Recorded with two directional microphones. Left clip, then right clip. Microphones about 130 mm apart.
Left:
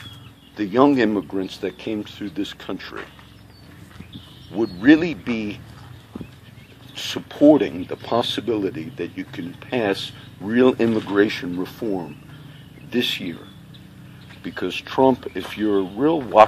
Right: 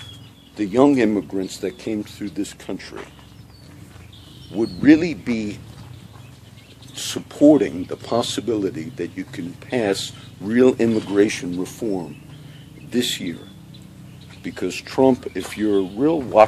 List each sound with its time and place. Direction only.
0.6 s speech: 15° right (ahead or behind)
4.5 s speech: 20° right (ahead or behind)
7.0 s speech: 15° right (ahead or behind)
12.9 s speech: 20° right (ahead or behind)
14.4 s speech: 20° right (ahead or behind)